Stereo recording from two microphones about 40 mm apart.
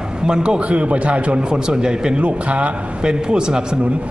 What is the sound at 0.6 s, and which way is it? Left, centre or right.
Speech, right.